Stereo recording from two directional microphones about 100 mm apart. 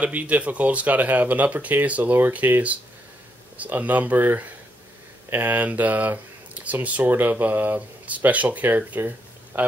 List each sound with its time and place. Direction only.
0.0 s a man's voice: 15° right (ahead or behind)